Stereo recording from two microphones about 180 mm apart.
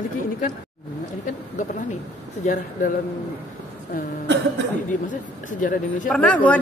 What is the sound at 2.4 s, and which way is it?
Speech, 45° left (ahead or behind).